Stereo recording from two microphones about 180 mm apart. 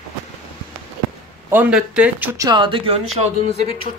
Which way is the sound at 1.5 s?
5° right (ahead or behind).